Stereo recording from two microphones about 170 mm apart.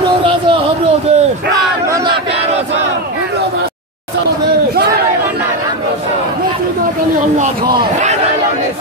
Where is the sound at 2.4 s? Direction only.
40° right (ahead or behind).